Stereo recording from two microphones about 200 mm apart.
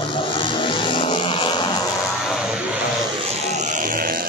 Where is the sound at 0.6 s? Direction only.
25° left (ahead or behind).